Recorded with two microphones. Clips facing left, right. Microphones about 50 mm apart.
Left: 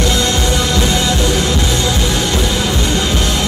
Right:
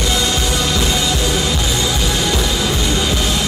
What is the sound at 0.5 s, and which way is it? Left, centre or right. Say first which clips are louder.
Music: left 3 dB; left.